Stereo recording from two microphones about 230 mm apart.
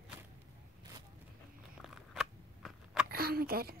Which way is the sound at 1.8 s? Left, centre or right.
Centre.